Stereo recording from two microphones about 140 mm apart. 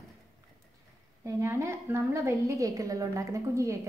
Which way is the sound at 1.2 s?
20° right (ahead or behind).